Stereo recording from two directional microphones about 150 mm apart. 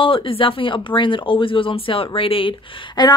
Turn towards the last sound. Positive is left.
turn(degrees=30)  # may be behind; listen again after turning